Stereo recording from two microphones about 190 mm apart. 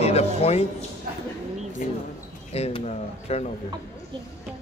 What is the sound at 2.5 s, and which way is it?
Speech, 30° left (ahead or behind).